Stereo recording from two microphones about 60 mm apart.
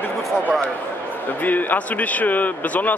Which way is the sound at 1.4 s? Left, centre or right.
Left.